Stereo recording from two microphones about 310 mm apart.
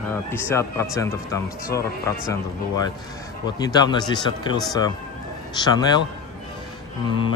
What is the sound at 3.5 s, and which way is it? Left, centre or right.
Speech, centre.